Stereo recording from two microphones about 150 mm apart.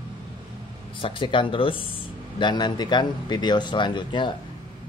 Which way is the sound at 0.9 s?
35° left (ahead or behind).